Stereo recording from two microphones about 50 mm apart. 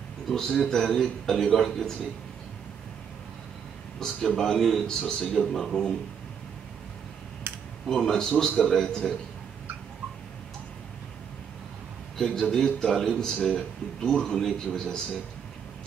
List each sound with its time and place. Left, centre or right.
0.3 s speech: centre
4.0 s speech: centre
7.5 s computer keyboard: right
7.8 s speech: centre
12.2 s speech: centre